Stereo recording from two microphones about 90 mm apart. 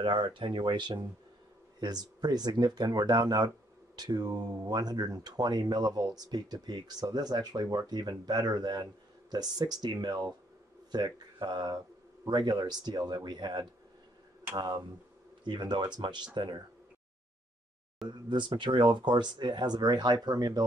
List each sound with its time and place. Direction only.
0.0 s speech: 65° right (ahead or behind)
18.0 s speech: 60° right (ahead or behind)